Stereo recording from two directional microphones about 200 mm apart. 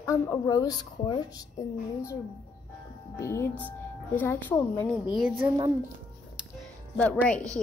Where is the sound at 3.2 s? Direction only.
15° left (ahead or behind).